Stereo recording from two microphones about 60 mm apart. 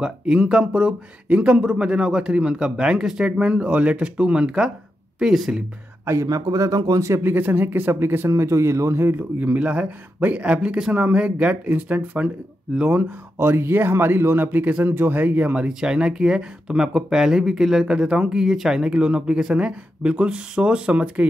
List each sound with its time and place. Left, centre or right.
0.0 s speech: centre
6.2 s speech: right
7.2 s speech: right
8.3 s speech: right
9.4 s speech: right
13.4 s speech: right
15.8 s speech: centre